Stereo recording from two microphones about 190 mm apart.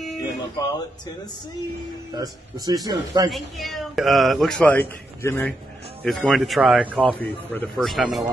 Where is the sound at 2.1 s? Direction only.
20° right (ahead or behind).